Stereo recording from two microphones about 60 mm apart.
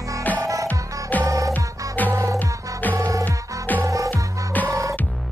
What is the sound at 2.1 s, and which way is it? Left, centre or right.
Music, right.